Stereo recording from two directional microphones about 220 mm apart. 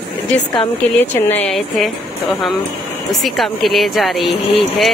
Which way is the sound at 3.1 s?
Centre (ahead or behind).